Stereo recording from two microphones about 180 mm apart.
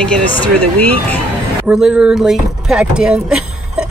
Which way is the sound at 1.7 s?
5° right (ahead or behind).